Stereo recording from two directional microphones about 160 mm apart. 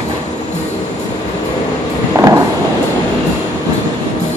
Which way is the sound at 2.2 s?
15° right (ahead or behind).